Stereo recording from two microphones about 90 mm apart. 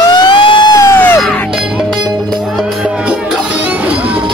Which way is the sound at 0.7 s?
30° left (ahead or behind).